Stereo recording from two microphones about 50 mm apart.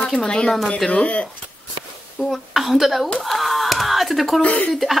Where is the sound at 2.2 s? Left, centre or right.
Centre.